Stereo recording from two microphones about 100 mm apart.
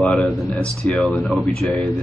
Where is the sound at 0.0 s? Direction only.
10° left (ahead or behind).